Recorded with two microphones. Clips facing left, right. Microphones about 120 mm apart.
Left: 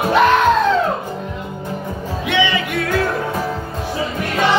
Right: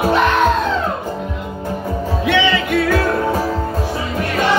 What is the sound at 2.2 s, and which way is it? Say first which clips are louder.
Music: right 2 dB; 20° left (ahead or behind).